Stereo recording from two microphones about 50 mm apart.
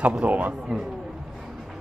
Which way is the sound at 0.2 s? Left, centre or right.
Right.